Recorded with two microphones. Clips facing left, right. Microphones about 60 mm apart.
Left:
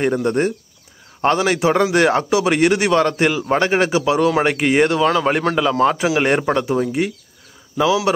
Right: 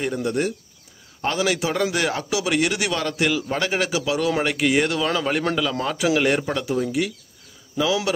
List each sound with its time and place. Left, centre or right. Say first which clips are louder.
0.0 s a man's voice: left 6 dB; left